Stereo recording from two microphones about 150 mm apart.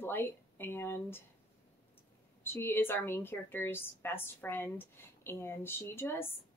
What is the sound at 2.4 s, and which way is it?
A woman's voice, 15° left (ahead or behind).